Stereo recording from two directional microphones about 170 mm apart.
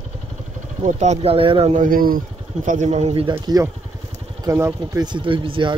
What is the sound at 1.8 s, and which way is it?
Speech, 55° right (ahead or behind).